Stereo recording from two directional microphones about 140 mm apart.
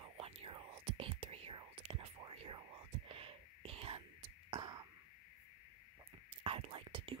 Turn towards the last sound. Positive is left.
turn(degrees=-40)  # may be behind; listen again after turning